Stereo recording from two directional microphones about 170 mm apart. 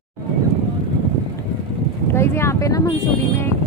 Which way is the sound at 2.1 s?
15° left (ahead or behind).